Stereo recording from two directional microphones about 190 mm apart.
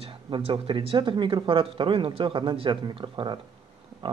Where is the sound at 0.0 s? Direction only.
30° right (ahead or behind).